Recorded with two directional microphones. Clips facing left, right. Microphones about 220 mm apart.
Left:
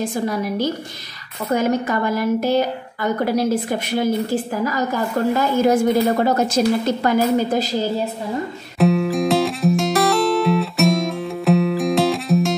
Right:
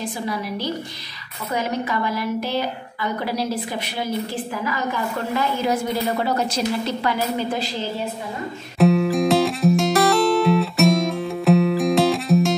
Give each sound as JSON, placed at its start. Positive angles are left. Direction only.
{"t": 0.0, "sound": "a woman's voice", "side_deg": 45}
{"t": 8.7, "sound": "music", "side_deg": 0}